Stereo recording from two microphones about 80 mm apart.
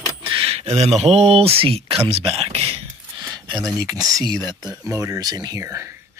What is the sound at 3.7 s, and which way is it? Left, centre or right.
Speech, right.